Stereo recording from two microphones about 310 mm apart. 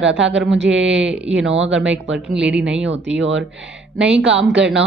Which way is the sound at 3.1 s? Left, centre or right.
Right.